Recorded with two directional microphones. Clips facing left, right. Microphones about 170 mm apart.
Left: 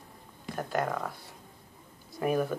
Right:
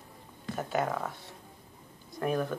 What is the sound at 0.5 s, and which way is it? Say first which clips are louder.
Speech: even; centre (ahead or behind).